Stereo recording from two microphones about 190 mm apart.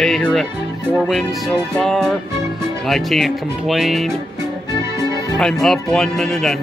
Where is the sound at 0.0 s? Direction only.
5° left (ahead or behind).